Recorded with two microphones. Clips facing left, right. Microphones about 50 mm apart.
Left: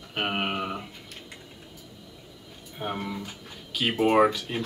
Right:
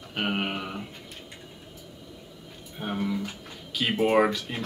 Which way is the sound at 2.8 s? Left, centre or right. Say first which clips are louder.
Right 2 dB; centre.